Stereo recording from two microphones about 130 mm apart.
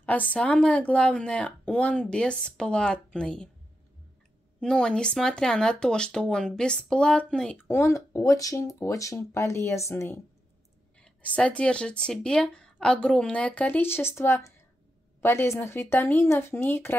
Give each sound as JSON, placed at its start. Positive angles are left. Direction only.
{"t": 0.0, "sound": "speech", "side_deg": 10}
{"t": 4.6, "sound": "speech", "side_deg": 5}